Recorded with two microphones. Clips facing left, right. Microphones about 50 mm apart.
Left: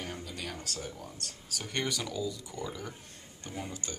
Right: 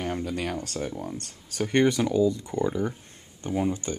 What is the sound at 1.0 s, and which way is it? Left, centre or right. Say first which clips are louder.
Speech: right 8 dB; right.